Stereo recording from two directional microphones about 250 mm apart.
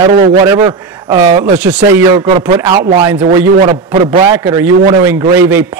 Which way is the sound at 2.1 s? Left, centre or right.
Centre.